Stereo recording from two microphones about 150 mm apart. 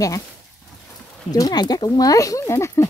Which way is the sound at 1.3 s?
25° left (ahead or behind).